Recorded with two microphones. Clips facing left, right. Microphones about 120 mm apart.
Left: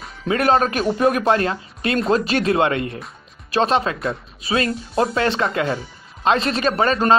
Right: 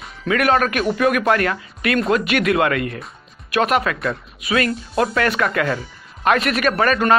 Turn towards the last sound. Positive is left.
turn(degrees=25)  # may be behind; listen again after turning